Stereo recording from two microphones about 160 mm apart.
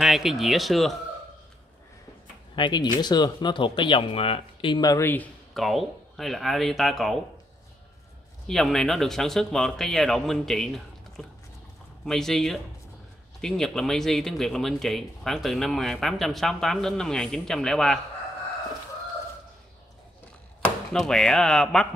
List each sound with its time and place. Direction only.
0.0 s speech: centre (ahead or behind)
2.5 s speech: 30° left (ahead or behind); by 7.2 s centre (ahead or behind)
8.5 s speech: centre (ahead or behind)
20.6 s speech: 5° left (ahead or behind)